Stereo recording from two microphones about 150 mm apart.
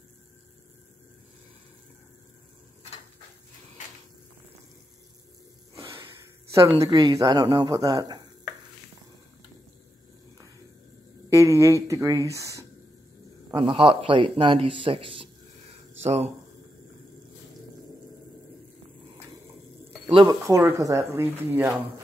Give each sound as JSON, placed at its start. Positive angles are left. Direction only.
{"t": 6.5, "sound": "speech", "side_deg": -20}
{"t": 11.3, "sound": "speech", "side_deg": -20}
{"t": 13.6, "sound": "a man's voice", "side_deg": -35}
{"t": 16.0, "sound": "speech", "side_deg": -45}
{"t": 20.2, "sound": "speech", "side_deg": -20}